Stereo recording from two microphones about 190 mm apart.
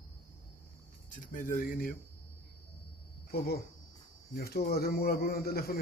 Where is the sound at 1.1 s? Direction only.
45° left (ahead or behind).